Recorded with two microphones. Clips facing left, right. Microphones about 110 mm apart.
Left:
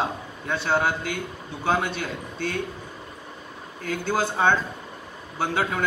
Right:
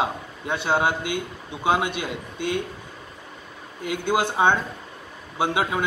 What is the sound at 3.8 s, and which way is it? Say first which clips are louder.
A man's voice: right 2 dB; 15° right (ahead or behind).